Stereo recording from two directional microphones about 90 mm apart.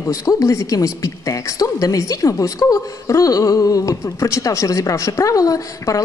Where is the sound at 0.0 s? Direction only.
40° left (ahead or behind).